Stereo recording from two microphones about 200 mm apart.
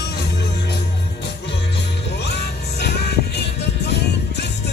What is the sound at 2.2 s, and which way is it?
Music, 55° left (ahead or behind).